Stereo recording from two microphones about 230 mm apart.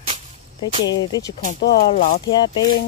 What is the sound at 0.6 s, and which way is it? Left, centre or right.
Speech, centre.